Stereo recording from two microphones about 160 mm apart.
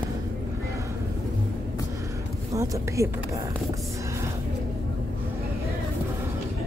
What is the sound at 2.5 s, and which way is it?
Speech, 20° right (ahead or behind).